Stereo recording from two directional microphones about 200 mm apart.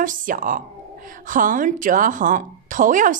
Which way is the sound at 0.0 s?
40° right (ahead or behind).